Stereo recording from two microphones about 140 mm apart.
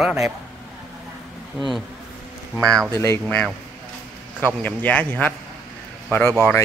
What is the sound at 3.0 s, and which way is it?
Speech, 20° left (ahead or behind).